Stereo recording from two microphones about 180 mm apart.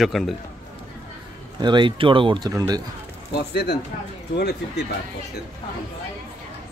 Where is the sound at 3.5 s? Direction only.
70° left (ahead or behind).